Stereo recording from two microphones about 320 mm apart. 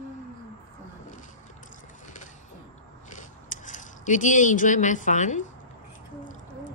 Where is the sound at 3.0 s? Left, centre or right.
Left.